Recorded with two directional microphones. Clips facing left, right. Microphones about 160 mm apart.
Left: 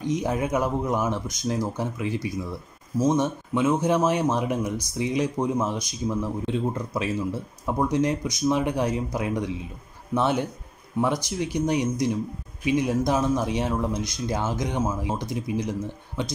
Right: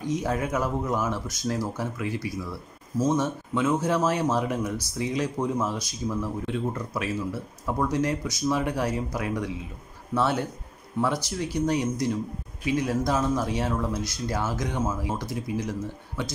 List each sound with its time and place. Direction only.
0.1 s speech: 20° left (ahead or behind)